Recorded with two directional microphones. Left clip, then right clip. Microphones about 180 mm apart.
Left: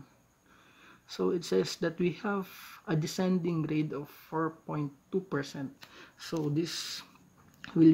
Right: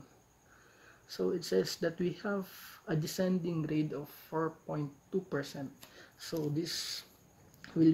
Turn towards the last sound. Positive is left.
turn(degrees=40)  # may be behind; listen again after turning